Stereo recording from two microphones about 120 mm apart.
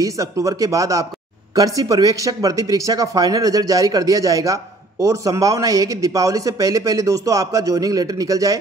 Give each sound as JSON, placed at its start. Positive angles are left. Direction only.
{"t": 0.0, "sound": "a man's voice", "side_deg": -25}